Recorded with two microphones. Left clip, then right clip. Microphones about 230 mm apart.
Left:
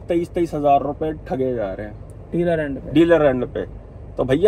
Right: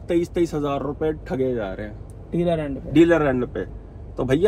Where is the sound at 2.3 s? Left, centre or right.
Centre.